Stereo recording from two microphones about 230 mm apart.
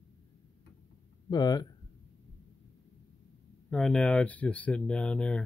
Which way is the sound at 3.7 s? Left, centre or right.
Centre.